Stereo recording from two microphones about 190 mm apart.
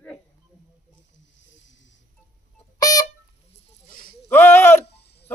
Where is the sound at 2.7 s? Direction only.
20° left (ahead or behind).